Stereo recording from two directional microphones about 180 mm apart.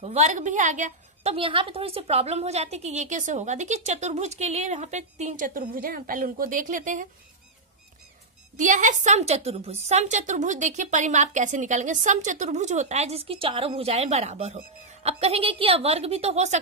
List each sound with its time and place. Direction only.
0.0 s a woman's voice: 40° right (ahead or behind)
1.3 s a woman's voice: 30° right (ahead or behind); by 7.1 s 45° right (ahead or behind)
8.5 s a woman's voice: 45° right (ahead or behind)